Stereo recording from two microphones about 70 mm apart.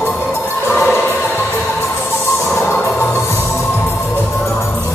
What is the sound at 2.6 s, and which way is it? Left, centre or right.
Music, left.